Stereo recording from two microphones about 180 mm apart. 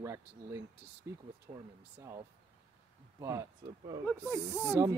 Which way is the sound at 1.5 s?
35° right (ahead or behind).